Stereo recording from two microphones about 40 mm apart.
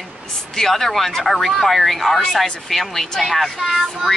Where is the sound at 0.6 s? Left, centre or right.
Centre.